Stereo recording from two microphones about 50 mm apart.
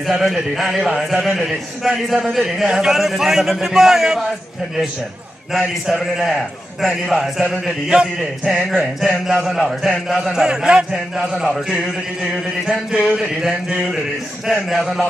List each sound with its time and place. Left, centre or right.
0.1 s a man's voice: centre
5.9 s a man's voice: centre
8.6 s a man's voice: centre
11.1 s a man's voice: centre
12.6 s a man's voice: centre
14.5 s a man's voice: centre